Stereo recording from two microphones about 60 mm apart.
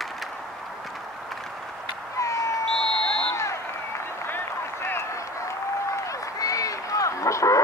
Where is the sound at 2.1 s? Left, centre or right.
Left.